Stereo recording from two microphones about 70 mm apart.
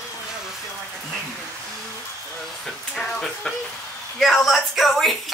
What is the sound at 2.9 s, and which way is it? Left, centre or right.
Speech, centre.